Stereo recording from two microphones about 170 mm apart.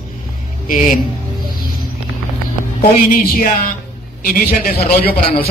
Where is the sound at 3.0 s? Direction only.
55° left (ahead or behind).